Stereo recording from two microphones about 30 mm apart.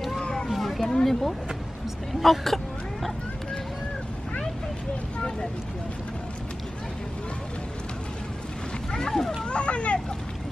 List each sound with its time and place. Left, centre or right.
0.5 s a sound: centre
0.9 s speech: centre
2.1 s speech: centre
2.4 s a sound: centre
9.0 s speech: centre
9.5 s vehicle: left